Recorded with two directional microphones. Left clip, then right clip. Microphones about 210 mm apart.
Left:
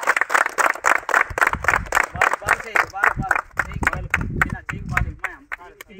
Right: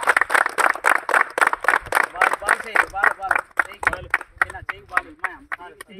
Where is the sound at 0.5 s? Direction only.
15° right (ahead or behind).